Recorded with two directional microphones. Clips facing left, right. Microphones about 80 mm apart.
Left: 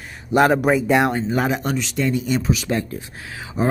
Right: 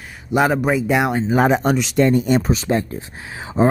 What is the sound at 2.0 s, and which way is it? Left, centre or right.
Speech, right.